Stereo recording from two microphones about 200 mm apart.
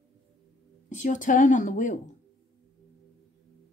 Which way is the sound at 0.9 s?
40° left (ahead or behind).